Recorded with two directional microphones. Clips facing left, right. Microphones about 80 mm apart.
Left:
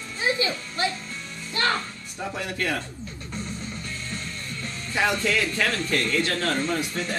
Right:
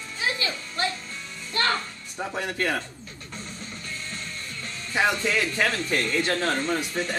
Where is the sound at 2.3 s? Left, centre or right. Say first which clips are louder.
Right 2 dB; right.